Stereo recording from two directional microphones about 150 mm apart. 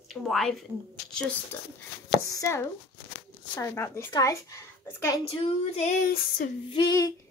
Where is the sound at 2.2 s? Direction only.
20° left (ahead or behind).